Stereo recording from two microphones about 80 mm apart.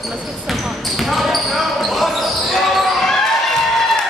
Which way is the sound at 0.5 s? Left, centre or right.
Centre.